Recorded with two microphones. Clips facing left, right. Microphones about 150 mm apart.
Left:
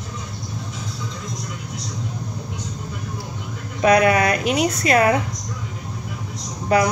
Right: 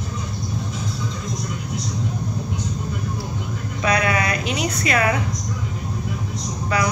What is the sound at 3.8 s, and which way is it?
A woman's voice, 50° left (ahead or behind).